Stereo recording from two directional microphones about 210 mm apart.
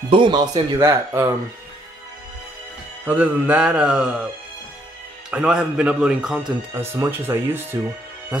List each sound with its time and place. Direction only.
0.1 s speech: 20° right (ahead or behind)
3.1 s mantra: 5° right (ahead or behind)
5.3 s mantra: 5° right (ahead or behind)
6.4 s speech: 10° right (ahead or behind)